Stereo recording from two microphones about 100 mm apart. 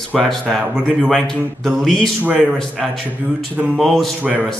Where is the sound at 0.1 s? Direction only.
10° left (ahead or behind).